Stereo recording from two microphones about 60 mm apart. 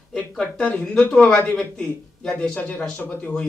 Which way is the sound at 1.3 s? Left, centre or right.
Left.